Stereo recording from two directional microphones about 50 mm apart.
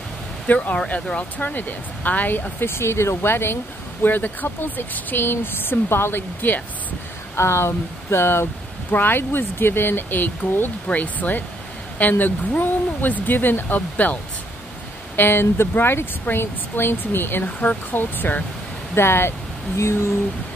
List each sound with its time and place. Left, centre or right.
0.5 s speech: left
2.7 s speech: left
4.0 s speech: left
7.3 s speech: left
8.9 s speech: left
15.1 s speech: left
18.9 s speech: left